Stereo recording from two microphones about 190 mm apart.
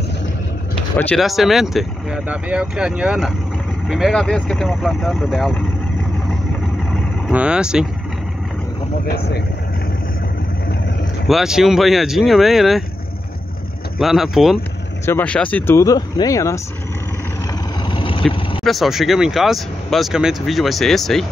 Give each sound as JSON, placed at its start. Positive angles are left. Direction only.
{"t": 0.9, "sound": "speech", "side_deg": 0}
{"t": 7.2, "sound": "speech", "side_deg": -5}
{"t": 9.0, "sound": "speech", "side_deg": 55}
{"t": 11.2, "sound": "speech", "side_deg": 0}
{"t": 13.9, "sound": "speech", "side_deg": 0}
{"t": 17.8, "sound": "vehicle", "side_deg": 25}
{"t": 18.6, "sound": "speech", "side_deg": 0}